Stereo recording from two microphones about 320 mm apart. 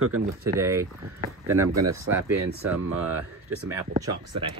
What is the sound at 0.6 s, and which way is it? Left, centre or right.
Speech, centre.